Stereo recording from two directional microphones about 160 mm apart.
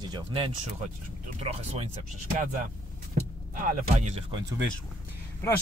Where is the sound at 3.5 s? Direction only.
55° right (ahead or behind).